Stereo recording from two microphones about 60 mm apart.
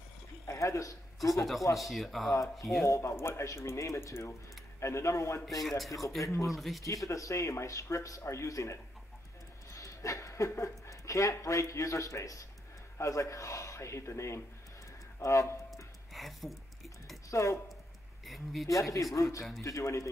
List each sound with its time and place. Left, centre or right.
0.5 s speech: left
1.8 s speech: centre
2.8 s speech: left
5.4 s speech: centre
6.2 s speech: left
6.5 s speech: centre
7.1 s speech: left
15.7 s music: centre
17.3 s speech: left
18.2 s speech: centre
18.7 s speech: left